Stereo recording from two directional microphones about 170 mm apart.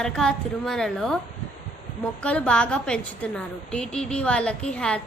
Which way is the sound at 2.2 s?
5° left (ahead or behind).